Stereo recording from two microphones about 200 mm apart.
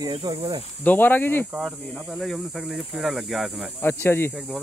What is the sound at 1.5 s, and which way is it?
Speech, 5° right (ahead or behind).